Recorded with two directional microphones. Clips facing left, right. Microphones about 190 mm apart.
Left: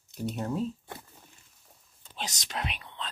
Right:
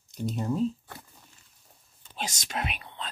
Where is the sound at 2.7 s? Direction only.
45° right (ahead or behind).